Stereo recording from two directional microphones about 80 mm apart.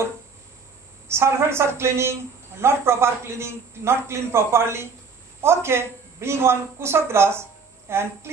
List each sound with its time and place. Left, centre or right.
1.0 s a man's voice: right